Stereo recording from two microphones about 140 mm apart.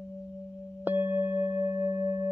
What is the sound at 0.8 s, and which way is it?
Singing bowl, 15° right (ahead or behind).